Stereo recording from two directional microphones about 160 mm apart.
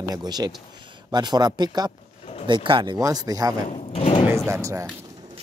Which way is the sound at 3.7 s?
40° left (ahead or behind).